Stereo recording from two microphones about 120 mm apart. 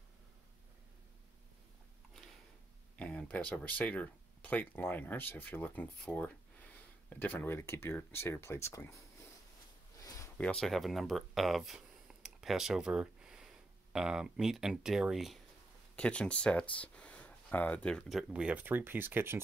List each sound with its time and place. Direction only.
3.0 s speech: 10° left (ahead or behind)
10.0 s a sound: 25° left (ahead or behind)
10.3 s speech: 10° left (ahead or behind)
16.0 s speech: 10° left (ahead or behind); by 19.4 s 20° right (ahead or behind)